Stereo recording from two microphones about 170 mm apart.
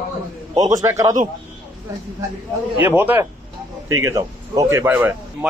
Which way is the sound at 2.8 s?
10° right (ahead or behind).